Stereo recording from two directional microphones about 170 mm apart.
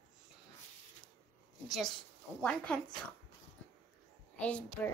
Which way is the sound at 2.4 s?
5° left (ahead or behind).